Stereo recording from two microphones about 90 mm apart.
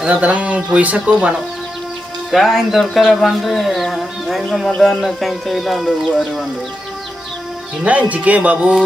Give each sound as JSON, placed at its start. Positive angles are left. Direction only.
{"t": 0.0, "sound": "speech", "side_deg": -15}
{"t": 2.3, "sound": "speech", "side_deg": 0}
{"t": 7.8, "sound": "speech", "side_deg": -15}